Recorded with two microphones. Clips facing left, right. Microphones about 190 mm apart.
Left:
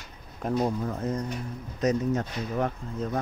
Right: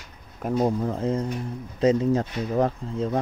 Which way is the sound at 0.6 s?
30° right (ahead or behind).